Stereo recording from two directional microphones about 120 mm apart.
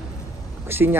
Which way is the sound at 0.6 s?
20° right (ahead or behind).